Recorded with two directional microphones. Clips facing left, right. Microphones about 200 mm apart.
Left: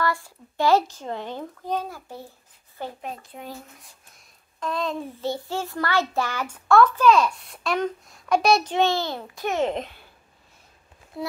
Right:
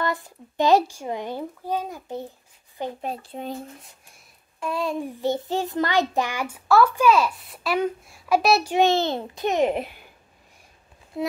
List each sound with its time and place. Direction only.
0.0 s a child's voice: 20° right (ahead or behind)
3.0 s speech: 35° right (ahead or behind)
4.6 s a child's voice: 10° right (ahead or behind)
11.1 s speech: 20° right (ahead or behind)